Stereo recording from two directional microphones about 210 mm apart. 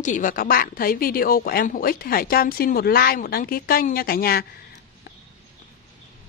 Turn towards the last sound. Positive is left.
turn(degrees=45)  # may be behind; listen again after turning